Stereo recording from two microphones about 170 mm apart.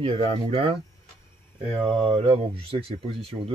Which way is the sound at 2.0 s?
35° right (ahead or behind).